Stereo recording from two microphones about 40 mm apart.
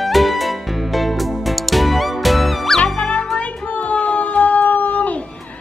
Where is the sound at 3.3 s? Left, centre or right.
Left.